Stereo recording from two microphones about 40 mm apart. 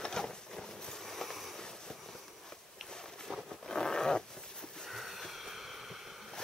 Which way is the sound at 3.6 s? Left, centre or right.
Centre.